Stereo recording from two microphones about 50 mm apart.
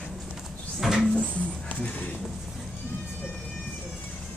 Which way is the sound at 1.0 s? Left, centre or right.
Left.